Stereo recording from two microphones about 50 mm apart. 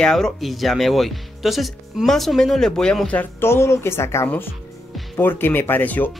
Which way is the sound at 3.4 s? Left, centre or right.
Left.